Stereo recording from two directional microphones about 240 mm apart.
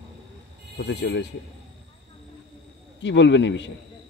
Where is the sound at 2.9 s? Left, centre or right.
Left.